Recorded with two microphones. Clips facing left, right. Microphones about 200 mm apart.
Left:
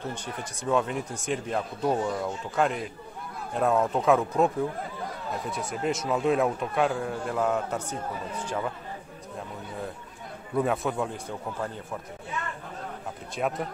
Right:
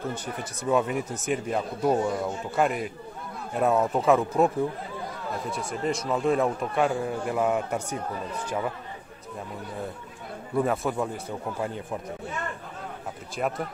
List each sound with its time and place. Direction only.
0.1 s a man's voice: 5° right (ahead or behind)
5.9 s a man's voice: centre (ahead or behind)
10.5 s a man's voice: centre (ahead or behind)
11.6 s speech: 15° right (ahead or behind)
13.4 s a man's voice: centre (ahead or behind)